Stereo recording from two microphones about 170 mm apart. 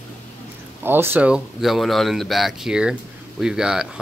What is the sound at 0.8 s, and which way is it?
A man's voice, 10° right (ahead or behind).